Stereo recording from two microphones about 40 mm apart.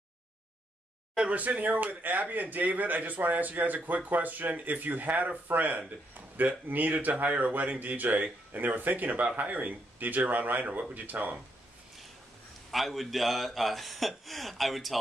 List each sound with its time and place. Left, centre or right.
1.3 s a man's voice: right
12.7 s a man's voice: centre